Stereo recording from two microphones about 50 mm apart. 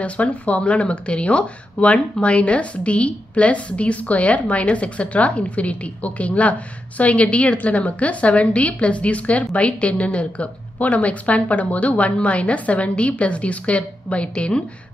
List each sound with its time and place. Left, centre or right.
0.0 s a woman's voice: left